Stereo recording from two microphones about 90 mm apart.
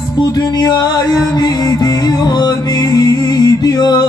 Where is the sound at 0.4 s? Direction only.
45° left (ahead or behind).